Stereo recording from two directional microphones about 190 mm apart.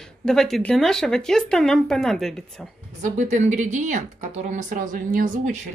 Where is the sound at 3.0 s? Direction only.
40° right (ahead or behind).